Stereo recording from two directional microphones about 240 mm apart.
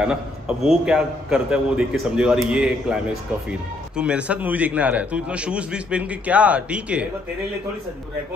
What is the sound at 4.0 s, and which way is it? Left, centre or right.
A man's voice, centre.